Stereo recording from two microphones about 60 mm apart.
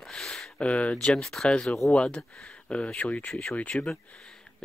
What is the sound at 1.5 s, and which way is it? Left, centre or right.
Speech, centre.